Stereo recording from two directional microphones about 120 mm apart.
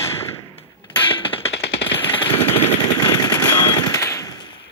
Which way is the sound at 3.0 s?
35° left (ahead or behind).